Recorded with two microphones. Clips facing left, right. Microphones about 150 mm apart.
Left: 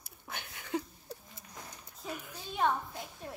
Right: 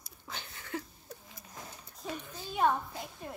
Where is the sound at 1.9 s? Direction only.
5° left (ahead or behind).